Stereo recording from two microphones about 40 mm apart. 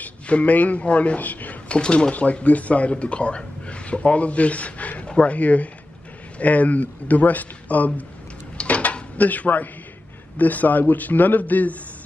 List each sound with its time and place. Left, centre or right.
0.0 s speech: left
1.8 s speech: left
8.7 s dishes: left
9.2 s a man's voice: left